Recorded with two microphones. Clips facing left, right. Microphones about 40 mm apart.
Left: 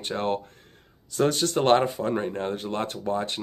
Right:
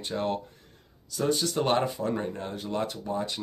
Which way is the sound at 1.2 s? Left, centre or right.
Left.